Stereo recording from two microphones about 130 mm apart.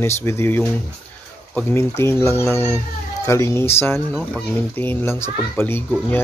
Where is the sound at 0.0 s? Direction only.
20° left (ahead or behind).